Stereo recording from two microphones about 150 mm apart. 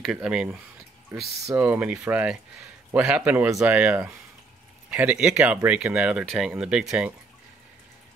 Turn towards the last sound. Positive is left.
turn(degrees=-5)  # may be behind; listen again after turning